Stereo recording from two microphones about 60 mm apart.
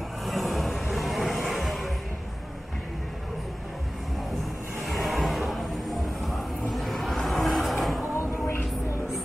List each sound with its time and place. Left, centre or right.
0.2 s music: centre
4.8 s music: centre
6.7 s a sound: centre
8.0 s music: left